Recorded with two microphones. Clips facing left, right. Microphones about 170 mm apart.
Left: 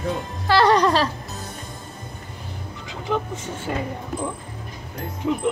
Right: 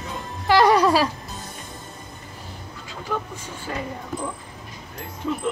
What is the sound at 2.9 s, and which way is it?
Vehicle, 20° left (ahead or behind).